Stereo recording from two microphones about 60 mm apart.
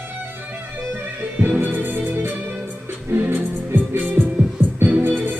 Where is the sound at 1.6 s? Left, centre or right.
Right.